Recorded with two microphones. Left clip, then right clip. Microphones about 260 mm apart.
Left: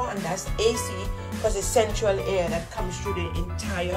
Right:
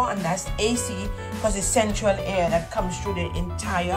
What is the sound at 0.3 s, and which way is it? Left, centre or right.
Speech, centre.